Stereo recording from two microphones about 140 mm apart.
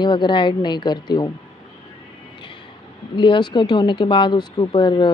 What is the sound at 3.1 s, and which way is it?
Speech, 35° left (ahead or behind).